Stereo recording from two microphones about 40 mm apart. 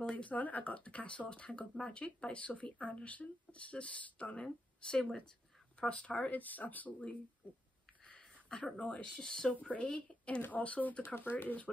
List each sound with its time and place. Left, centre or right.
0.1 s speech: left
8.0 s a sound: left
8.7 s speech: left
9.6 s speech: left